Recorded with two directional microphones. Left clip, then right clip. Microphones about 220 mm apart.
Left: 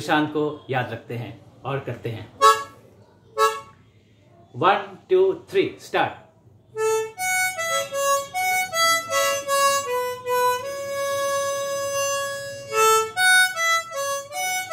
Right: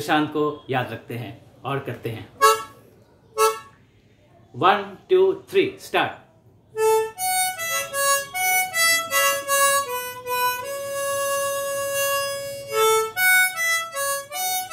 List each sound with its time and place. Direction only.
0.0 s speech: 5° right (ahead or behind)
4.6 s speech: 5° right (ahead or behind)
6.7 s harmonica: 5° right (ahead or behind)
10.6 s harmonica: centre (ahead or behind)